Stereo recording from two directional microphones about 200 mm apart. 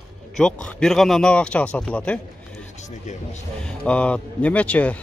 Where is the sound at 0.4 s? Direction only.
5° left (ahead or behind).